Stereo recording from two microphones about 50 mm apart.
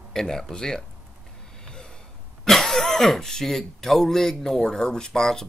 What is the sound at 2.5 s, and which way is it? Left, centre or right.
Speech, centre.